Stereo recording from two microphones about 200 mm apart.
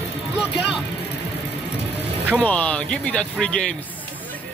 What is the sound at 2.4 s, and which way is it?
Speech, 5° left (ahead or behind).